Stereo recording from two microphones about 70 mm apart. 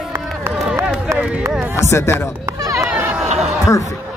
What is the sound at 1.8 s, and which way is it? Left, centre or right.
Speech, left.